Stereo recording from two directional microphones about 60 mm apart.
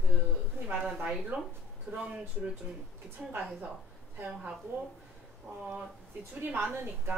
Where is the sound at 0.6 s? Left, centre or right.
Right.